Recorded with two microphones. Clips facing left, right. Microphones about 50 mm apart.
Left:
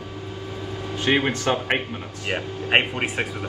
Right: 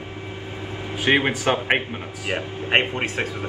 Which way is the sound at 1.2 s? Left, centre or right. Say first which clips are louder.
Right 1 dB; right.